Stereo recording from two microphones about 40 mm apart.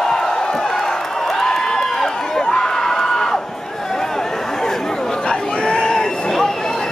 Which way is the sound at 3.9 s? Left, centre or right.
Centre.